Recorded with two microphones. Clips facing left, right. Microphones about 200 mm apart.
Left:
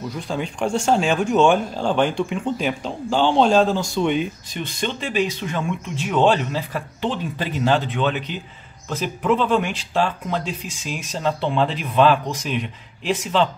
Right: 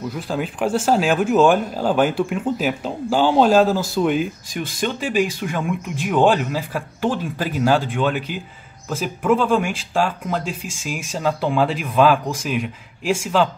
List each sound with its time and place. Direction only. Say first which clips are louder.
0.1 s speech: right 2 dB; 5° right (ahead or behind)